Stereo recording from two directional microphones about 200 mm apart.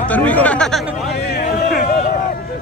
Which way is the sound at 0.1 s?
5° left (ahead or behind).